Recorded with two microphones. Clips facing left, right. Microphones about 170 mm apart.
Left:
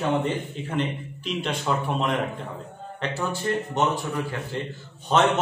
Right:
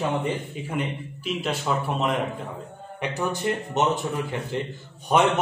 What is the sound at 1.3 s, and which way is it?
Speech, 5° right (ahead or behind).